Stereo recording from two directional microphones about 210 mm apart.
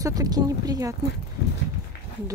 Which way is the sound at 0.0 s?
15° right (ahead or behind).